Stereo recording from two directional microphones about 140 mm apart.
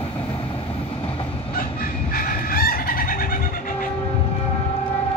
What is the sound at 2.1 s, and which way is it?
Chicken, 90° left.